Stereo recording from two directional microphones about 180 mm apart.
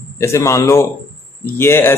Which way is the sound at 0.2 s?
15° left (ahead or behind).